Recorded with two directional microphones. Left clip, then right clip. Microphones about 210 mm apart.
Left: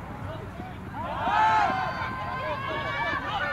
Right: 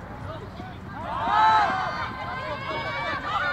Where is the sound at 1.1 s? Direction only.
25° left (ahead or behind).